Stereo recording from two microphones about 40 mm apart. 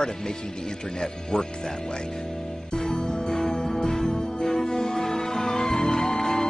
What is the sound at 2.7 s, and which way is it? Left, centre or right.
Music, centre.